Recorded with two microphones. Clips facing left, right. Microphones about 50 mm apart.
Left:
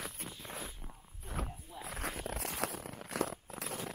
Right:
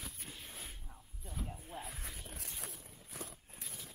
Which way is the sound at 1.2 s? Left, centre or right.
Left.